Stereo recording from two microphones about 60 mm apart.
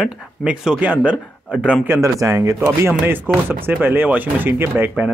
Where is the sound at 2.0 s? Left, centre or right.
Right.